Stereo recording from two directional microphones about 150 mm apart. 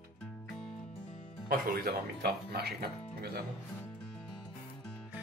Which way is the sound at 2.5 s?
90° right.